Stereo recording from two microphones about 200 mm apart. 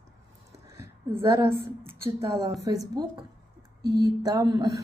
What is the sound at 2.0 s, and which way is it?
A woman's voice, 15° right (ahead or behind).